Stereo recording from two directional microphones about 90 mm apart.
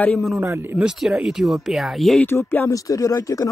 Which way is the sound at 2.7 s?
40° left (ahead or behind).